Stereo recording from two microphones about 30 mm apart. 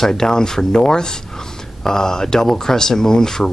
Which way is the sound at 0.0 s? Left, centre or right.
Centre.